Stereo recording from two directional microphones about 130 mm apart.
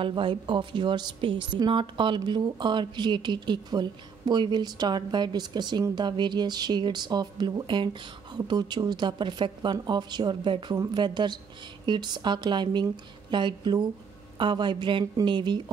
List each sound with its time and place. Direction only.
0.0 s a woman's voice: 40° right (ahead or behind)